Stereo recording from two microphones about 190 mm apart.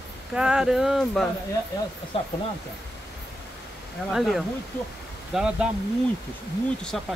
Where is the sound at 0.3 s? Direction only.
5° right (ahead or behind).